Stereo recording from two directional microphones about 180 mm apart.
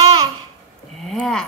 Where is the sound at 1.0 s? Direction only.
Centre (ahead or behind).